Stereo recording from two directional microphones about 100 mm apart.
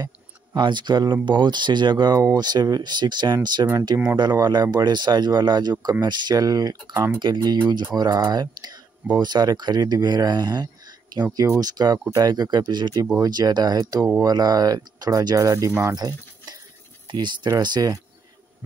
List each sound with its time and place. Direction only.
0.6 s speech: 50° right (ahead or behind)
3.6 s speech: 35° right (ahead or behind)
13.0 s speech: 35° right (ahead or behind)